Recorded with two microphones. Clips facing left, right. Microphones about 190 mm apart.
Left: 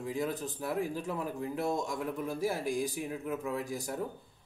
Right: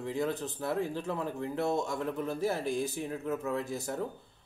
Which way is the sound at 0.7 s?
15° left (ahead or behind).